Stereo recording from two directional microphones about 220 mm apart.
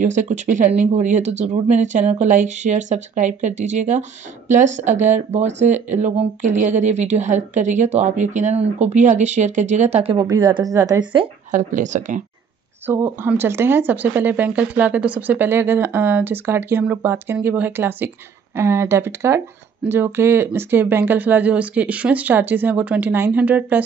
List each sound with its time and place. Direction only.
0.0 s a woman's voice: 35° right (ahead or behind); by 11.2 s 15° right (ahead or behind)
11.5 s a woman's voice: 35° right (ahead or behind)
12.8 s speech: 10° right (ahead or behind)